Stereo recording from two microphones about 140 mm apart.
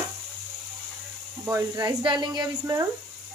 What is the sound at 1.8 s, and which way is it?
A woman's voice, 35° right (ahead or behind).